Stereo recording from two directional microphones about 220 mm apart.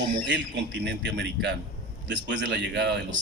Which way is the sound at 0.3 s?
50° right (ahead or behind).